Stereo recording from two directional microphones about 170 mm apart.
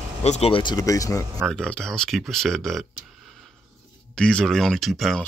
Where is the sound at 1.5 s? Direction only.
5° left (ahead or behind).